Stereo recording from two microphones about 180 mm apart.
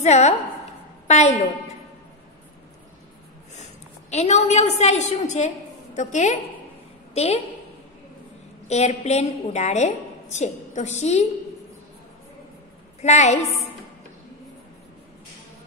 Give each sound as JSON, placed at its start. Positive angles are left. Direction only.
{"t": 0.0, "sound": "a woman's voice", "side_deg": 40}
{"t": 1.0, "sound": "a sound", "side_deg": 40}
{"t": 4.1, "sound": "a woman's voice", "side_deg": 40}
{"t": 8.6, "sound": "a woman's voice", "side_deg": 40}
{"t": 13.0, "sound": "a woman's voice", "side_deg": 40}